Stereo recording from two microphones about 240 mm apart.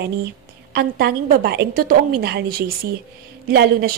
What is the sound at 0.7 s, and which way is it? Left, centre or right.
A woman's voice, right.